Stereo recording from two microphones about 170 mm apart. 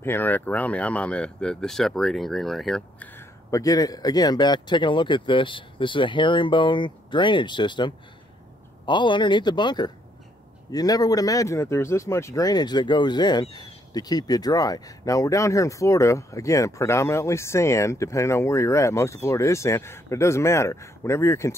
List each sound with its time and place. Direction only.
0.0 s speech: 10° left (ahead or behind)
3.2 s speech: 20° left (ahead or behind)